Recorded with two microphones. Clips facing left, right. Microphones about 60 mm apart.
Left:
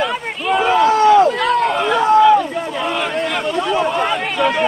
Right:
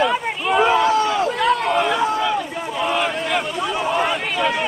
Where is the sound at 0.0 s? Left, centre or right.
Centre.